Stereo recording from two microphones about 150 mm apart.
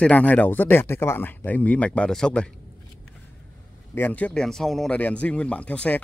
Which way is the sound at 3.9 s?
10° left (ahead or behind).